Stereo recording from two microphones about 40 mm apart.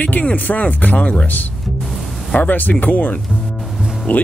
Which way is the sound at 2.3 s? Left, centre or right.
Left.